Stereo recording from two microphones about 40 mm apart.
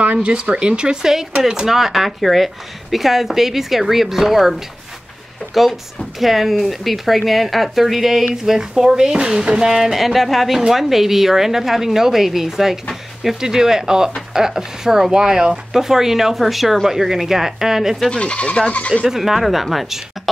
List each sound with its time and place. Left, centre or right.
0.2 s speech: right
1.0 s speech: centre
18.1 s speech: left
19.0 s speech: centre